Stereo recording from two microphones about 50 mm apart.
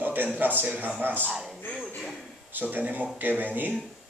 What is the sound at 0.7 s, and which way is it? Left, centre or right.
Speech, right.